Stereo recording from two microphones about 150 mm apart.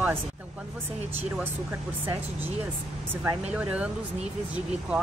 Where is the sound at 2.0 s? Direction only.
15° right (ahead or behind).